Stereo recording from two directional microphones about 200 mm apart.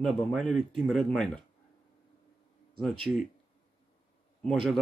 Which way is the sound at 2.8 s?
Centre (ahead or behind).